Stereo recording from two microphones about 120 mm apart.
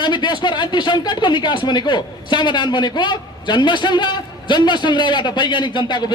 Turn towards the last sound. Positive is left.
turn(degrees=40)  # may be behind; listen again after turning